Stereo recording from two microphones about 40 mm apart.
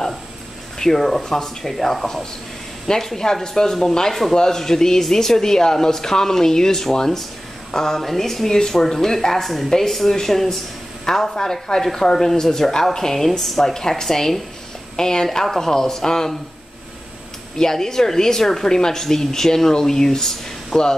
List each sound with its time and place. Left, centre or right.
0.7 s a woman's voice: centre
17.6 s a woman's voice: centre